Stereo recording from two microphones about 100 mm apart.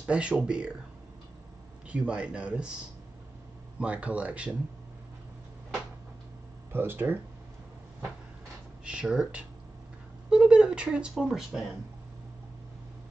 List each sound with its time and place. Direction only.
0.0 s speech: 10° right (ahead or behind)
1.9 s speech: 10° right (ahead or behind)
3.8 s speech: 15° right (ahead or behind)
6.7 s speech: 20° right (ahead or behind)
8.8 s speech: 10° right (ahead or behind)